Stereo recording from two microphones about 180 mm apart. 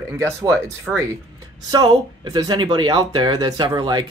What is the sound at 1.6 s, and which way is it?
Speech, 20° right (ahead or behind).